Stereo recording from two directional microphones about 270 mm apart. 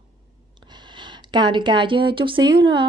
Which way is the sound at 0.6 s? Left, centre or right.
Centre.